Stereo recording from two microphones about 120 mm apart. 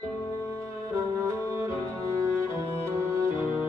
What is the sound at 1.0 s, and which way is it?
Music, 25° right (ahead or behind).